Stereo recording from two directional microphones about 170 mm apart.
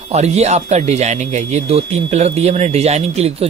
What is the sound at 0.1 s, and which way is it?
Speech, 40° right (ahead or behind).